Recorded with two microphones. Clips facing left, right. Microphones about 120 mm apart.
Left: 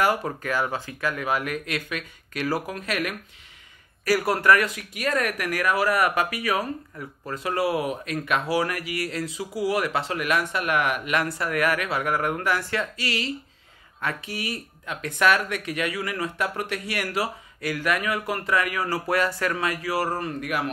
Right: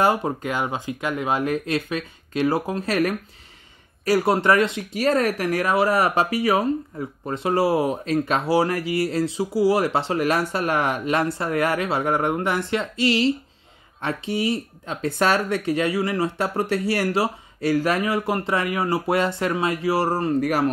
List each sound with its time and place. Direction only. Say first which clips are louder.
0.0 s speech: right 3 dB; 25° right (ahead or behind)
4.0 s speech: right 3 dB; 25° right (ahead or behind)